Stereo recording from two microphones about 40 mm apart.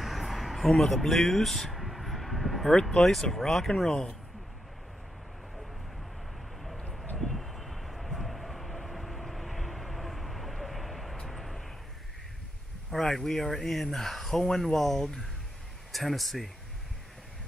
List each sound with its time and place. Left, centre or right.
0.0 s a sound: centre
2.7 s speech: centre
3.8 s speech: centre
7.2 s vehicle: centre
13.1 s speech: centre